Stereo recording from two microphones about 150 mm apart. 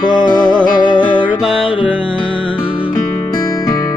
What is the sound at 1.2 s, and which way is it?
Music, 10° right (ahead or behind).